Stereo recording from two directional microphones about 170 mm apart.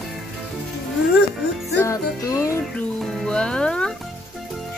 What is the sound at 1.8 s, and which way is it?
Music, 20° left (ahead or behind).